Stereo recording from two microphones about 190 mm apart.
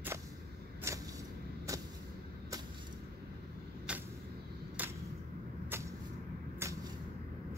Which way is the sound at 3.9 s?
5° right (ahead or behind).